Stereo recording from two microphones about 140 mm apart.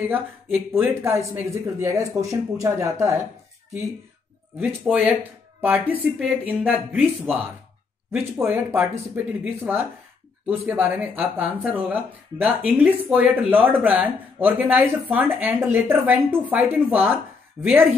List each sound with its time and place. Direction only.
0.1 s speech: 15° right (ahead or behind)
4.6 s speech: 10° right (ahead or behind)